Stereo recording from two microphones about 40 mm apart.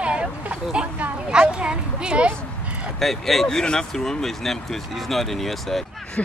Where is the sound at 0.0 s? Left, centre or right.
Right.